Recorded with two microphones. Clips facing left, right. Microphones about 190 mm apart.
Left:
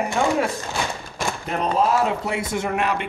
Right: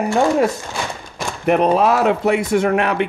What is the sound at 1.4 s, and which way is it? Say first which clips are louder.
Speech: right 8 dB; 70° right (ahead or behind).